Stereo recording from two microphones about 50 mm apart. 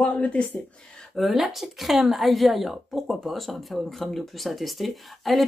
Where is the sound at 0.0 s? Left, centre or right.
Left.